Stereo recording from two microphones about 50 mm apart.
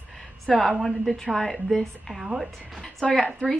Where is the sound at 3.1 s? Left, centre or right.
Centre.